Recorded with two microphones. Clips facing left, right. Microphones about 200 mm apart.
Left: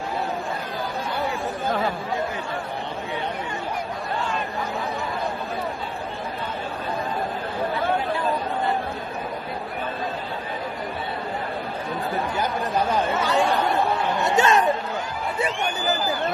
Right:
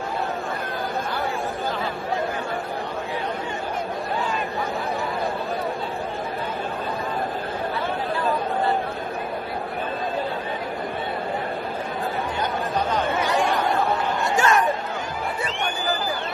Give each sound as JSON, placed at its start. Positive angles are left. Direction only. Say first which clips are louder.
{"t": 14.2, "sound": "chatter", "louder": "left 2 dB", "side_deg": 20}